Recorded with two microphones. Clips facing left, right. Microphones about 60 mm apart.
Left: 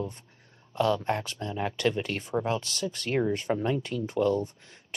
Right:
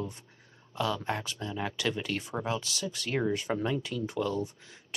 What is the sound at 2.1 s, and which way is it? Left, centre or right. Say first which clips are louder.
Speech: left 4 dB; left.